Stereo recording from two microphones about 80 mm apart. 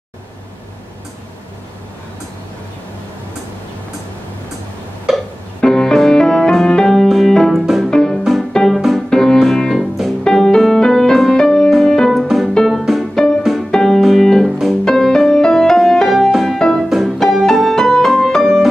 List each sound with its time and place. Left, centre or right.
5.1 s music: centre
5.6 s music: centre
13.4 s piano: centre
16.9 s music: centre